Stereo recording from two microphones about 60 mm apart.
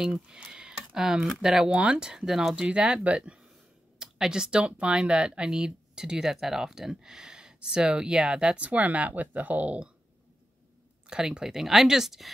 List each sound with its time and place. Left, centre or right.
0.0 s speech: centre
2.5 s speech: centre
11.1 s speech: centre